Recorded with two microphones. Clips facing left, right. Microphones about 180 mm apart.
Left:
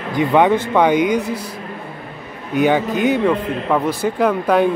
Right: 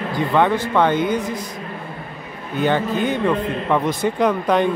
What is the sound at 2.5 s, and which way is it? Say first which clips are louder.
Speech: left 3 dB; 10° left (ahead or behind).